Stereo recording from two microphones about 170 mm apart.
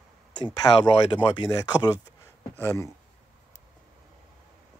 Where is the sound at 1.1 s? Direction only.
25° left (ahead or behind).